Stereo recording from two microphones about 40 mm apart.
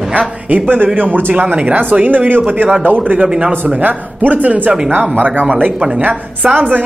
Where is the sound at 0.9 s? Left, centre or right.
Right.